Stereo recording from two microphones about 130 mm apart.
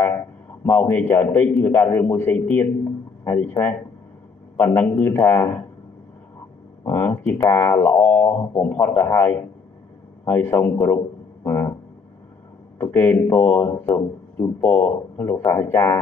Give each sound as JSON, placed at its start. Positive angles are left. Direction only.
{"t": 0.7, "sound": "speech", "side_deg": 15}
{"t": 6.9, "sound": "speech", "side_deg": 15}
{"t": 11.4, "sound": "a sound", "side_deg": 20}
{"t": 12.7, "sound": "a man's voice", "side_deg": 15}